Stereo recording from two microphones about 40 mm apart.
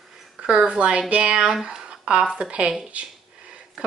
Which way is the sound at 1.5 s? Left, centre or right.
Centre.